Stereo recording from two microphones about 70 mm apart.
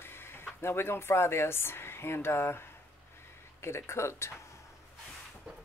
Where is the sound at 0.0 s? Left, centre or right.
Left.